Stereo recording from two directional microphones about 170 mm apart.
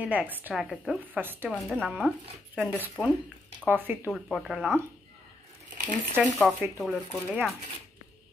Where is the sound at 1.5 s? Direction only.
5° left (ahead or behind).